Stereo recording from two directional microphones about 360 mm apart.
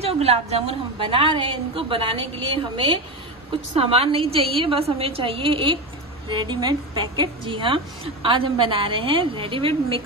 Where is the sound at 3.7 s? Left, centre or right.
Centre.